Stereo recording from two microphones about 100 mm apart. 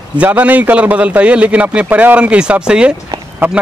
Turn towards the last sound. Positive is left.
turn(degrees=-20)  # may be behind; listen again after turning